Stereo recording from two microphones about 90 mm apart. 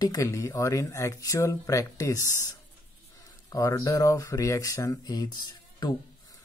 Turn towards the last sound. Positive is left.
turn(degrees=50)  # may be behind; listen again after turning